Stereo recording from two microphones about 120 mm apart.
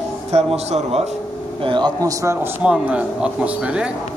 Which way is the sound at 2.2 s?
20° right (ahead or behind).